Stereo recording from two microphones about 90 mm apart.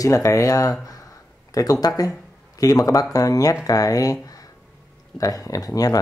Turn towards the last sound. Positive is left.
turn(degrees=40)  # may be behind; listen again after turning